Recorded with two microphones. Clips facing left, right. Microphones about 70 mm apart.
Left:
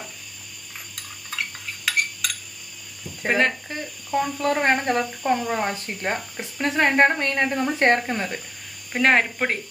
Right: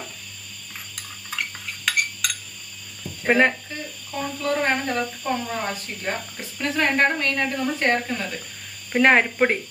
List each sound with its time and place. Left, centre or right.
1.9 s cutlery: centre
3.3 s speech: centre
4.4 s speech: left
8.9 s speech: centre